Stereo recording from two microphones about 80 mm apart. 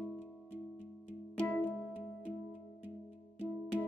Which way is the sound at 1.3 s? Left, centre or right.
Left.